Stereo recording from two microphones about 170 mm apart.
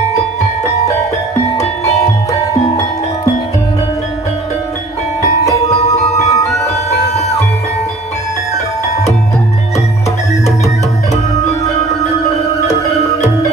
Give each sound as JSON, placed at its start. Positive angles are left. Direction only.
{"t": 5.9, "sound": "music", "side_deg": 20}
{"t": 12.6, "sound": "music", "side_deg": 40}